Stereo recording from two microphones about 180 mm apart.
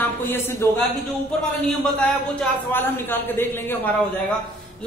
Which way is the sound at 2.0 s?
10° left (ahead or behind).